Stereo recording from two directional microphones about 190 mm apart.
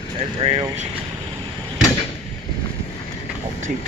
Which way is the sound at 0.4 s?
30° right (ahead or behind).